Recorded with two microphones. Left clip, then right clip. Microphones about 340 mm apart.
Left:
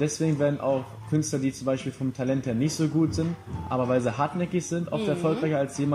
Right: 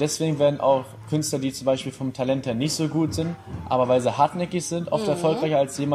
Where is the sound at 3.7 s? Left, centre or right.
Right.